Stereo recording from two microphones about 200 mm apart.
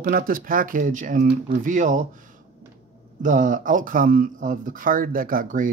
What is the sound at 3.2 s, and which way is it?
Speech, 40° right (ahead or behind).